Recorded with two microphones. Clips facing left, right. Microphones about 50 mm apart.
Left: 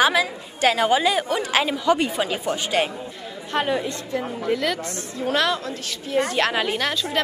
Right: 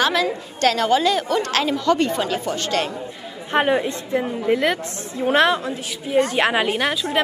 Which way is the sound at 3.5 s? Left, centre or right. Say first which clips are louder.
Right 4 dB; right.